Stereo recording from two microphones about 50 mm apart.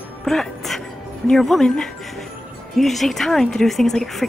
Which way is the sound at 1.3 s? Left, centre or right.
Centre.